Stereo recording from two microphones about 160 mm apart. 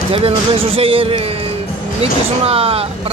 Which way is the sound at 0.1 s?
35° right (ahead or behind).